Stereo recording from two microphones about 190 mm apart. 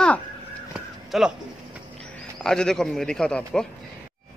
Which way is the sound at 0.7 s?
5° right (ahead or behind).